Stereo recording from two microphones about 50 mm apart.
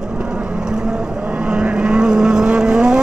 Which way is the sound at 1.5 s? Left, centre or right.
Centre.